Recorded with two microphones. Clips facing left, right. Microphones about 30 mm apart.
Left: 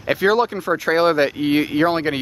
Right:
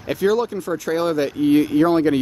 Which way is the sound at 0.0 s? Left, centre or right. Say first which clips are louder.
Left 2 dB; left.